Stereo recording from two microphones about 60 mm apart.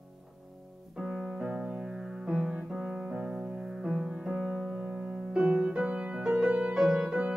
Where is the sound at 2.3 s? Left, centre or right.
Centre.